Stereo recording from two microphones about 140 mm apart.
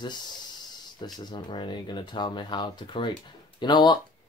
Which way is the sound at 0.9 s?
30° left (ahead or behind).